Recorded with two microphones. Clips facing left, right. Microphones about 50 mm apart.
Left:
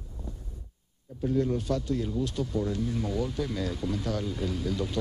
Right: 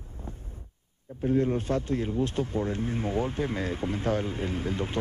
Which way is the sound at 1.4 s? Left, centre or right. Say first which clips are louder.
Even; right.